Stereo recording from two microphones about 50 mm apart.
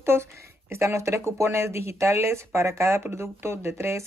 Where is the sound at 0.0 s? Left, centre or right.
Right.